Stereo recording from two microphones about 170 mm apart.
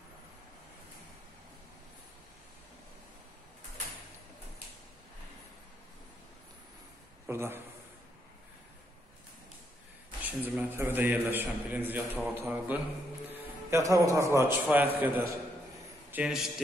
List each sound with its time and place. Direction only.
7.2 s a man's voice: 15° right (ahead or behind)
10.2 s a man's voice: 10° right (ahead or behind)
13.3 s music: 15° right (ahead or behind)
14.3 s a man's voice: 15° right (ahead or behind)